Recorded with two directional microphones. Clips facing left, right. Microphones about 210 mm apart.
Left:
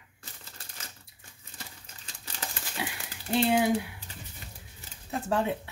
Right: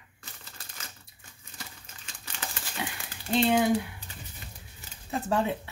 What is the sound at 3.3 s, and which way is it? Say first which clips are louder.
Speech: right 1 dB; 10° left (ahead or behind).